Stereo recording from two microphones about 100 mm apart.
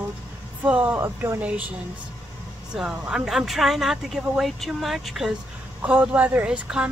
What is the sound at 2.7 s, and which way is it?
Speech, 5° right (ahead or behind).